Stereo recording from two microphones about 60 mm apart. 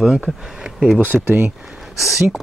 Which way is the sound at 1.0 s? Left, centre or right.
Right.